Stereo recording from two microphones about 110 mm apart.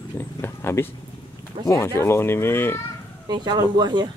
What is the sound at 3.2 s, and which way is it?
Speech, 40° right (ahead or behind).